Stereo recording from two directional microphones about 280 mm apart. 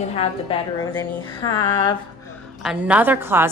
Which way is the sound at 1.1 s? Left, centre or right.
Centre.